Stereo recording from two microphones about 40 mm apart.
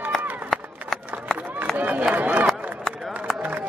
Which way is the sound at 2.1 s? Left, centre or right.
Right.